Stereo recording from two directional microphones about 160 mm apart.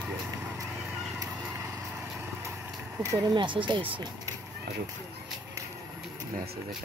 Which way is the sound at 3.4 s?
30° right (ahead or behind).